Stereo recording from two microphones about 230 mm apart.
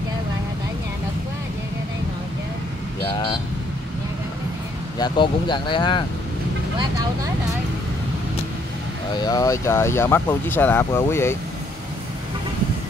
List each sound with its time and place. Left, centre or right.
3.1 s vehicle: centre
4.9 s speech: centre
9.2 s speech: centre